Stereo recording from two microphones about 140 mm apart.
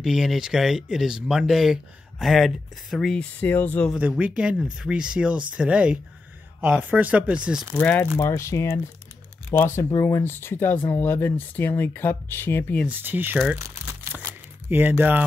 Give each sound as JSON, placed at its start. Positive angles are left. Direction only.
{"t": 0.0, "sound": "speech", "side_deg": 0}
{"t": 3.9, "sound": "speech", "side_deg": -5}
{"t": 7.8, "sound": "speech", "side_deg": 10}
{"t": 12.8, "sound": "speech", "side_deg": -15}
{"t": 13.6, "sound": "crumpling", "side_deg": -20}
{"t": 14.7, "sound": "speech", "side_deg": -15}